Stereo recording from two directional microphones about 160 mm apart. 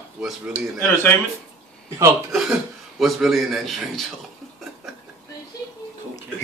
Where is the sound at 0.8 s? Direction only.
10° left (ahead or behind).